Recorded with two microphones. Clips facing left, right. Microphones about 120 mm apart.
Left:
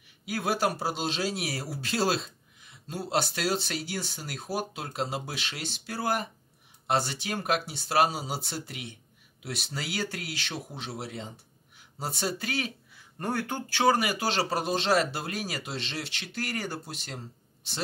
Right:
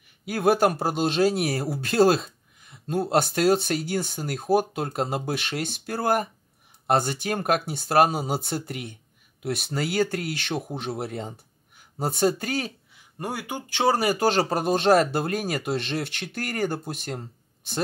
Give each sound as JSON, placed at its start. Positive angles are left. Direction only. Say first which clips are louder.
{"t": 0.2, "sound": "speech", "louder": "right 7 dB", "side_deg": -55}
{"t": 12.9, "sound": "speech", "louder": "left 2 dB", "side_deg": -10}
{"t": 13.7, "sound": "speech", "louder": "right 1 dB", "side_deg": -30}
{"t": 14.0, "sound": "speech", "louder": "right 7 dB", "side_deg": -45}